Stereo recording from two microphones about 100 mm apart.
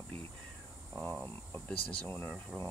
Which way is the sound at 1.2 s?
15° left (ahead or behind).